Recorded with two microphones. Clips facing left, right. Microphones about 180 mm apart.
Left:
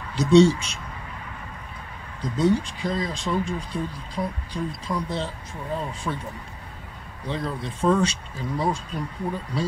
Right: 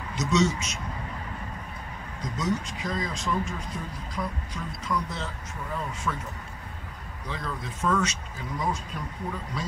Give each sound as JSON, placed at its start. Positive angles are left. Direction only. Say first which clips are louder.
{"t": 0.1, "sound": "speech", "louder": "left 9 dB", "side_deg": 30}
{"t": 2.2, "sound": "speech", "louder": "left 8 dB", "side_deg": 30}
{"t": 7.2, "sound": "speech", "louder": "left 6 dB", "side_deg": 30}